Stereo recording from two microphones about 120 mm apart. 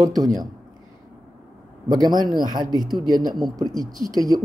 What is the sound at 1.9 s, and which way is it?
A woman's voice, 35° right (ahead or behind).